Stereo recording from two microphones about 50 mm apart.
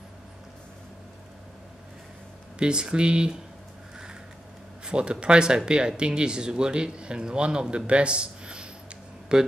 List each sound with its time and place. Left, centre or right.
2.6 s speech: centre
4.8 s speech: centre